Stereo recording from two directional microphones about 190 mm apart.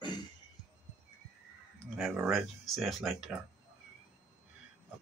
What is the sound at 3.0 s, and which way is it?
Speech, 10° right (ahead or behind).